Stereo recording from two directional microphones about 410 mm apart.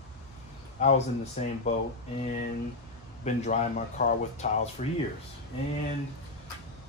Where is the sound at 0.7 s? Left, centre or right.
Centre.